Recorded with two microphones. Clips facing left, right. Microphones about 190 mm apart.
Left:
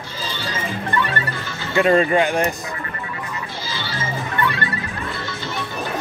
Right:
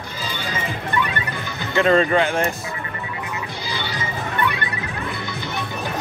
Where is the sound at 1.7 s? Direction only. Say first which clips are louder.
Left 1 dB; 15° left (ahead or behind).